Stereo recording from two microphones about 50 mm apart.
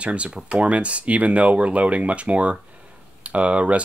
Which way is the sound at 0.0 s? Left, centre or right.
Right.